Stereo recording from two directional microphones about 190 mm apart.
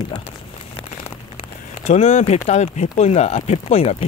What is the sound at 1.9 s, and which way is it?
Speech, 35° left (ahead or behind).